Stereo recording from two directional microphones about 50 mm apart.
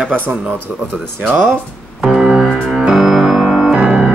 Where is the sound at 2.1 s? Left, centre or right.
Centre.